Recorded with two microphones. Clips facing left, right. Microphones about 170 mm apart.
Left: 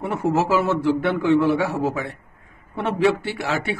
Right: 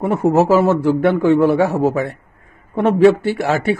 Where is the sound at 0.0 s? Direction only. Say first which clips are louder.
Right 7 dB; 45° right (ahead or behind).